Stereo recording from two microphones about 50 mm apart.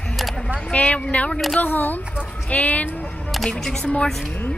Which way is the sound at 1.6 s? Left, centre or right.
Left.